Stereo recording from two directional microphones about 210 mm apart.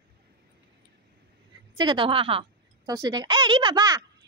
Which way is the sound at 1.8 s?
25° right (ahead or behind).